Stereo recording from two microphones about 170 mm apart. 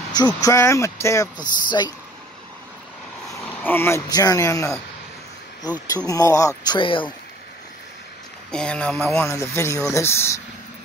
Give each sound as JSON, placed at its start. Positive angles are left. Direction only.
{"t": 0.1, "sound": "speech", "side_deg": 20}
{"t": 3.6, "sound": "speech", "side_deg": 15}
{"t": 6.0, "sound": "speech", "side_deg": 20}
{"t": 8.5, "sound": "speech", "side_deg": 5}